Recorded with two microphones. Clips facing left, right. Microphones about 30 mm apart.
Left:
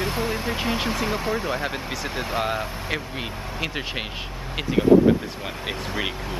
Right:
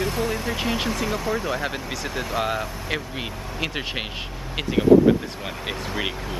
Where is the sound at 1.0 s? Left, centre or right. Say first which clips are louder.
Even; left.